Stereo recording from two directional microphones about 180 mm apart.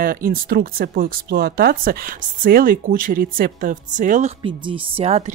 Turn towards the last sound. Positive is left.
turn(degrees=-35)  # may be behind; listen again after turning